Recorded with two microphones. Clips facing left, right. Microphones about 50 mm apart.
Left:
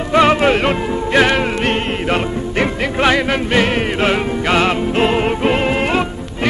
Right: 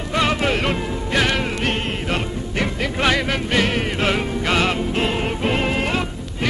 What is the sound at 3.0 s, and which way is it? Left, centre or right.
Music, left.